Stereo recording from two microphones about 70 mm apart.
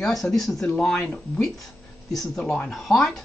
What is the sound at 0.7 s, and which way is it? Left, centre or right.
Speech, centre.